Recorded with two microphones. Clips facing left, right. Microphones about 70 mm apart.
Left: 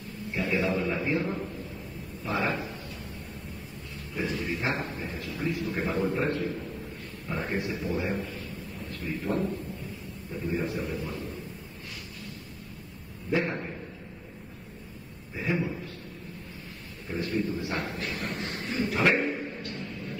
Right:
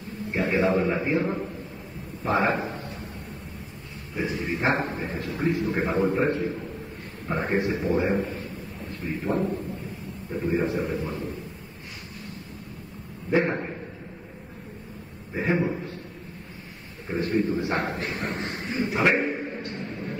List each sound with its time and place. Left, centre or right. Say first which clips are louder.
0.3 s a man's voice: right 5 dB; right
2.2 s a man's voice: right 6 dB; right
4.1 s a man's voice: right 3 dB; centre
4.6 s a man's voice: right 6 dB; right; by 6.7 s centre
7.2 s a man's voice: right 6 dB; right
9.0 s a man's voice: right 3 dB; right
13.3 s a man's voice: right 5 dB; right
15.3 s a man's voice: right 5 dB; right
17.1 s a man's voice: right 5 dB; right